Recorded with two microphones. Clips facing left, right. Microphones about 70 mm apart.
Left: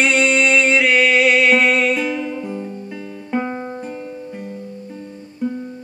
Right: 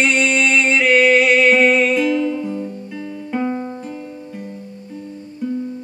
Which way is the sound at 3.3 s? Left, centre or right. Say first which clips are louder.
Right 1 dB; left.